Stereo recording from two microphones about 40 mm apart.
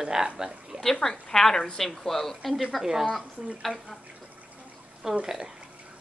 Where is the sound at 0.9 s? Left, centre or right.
Centre.